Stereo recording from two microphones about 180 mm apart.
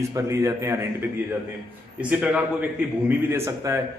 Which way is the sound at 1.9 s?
5° right (ahead or behind).